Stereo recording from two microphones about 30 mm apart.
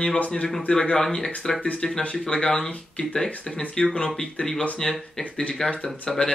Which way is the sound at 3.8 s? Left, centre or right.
Centre.